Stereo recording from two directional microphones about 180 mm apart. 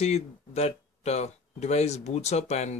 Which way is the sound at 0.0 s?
35° left (ahead or behind).